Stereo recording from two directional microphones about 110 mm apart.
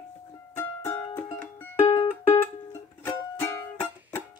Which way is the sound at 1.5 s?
20° left (ahead or behind).